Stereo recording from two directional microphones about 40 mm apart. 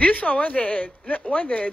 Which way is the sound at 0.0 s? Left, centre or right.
Left.